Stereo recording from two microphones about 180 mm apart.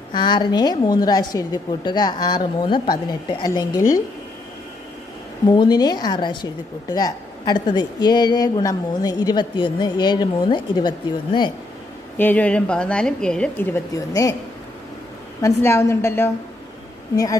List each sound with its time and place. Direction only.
0.1 s a woman's voice: 25° left (ahead or behind)
5.5 s a woman's voice: 20° left (ahead or behind)
12.2 s a woman's voice: 10° left (ahead or behind)
13.9 s a woman's voice: 20° left (ahead or behind)
15.4 s a woman's voice: 15° left (ahead or behind)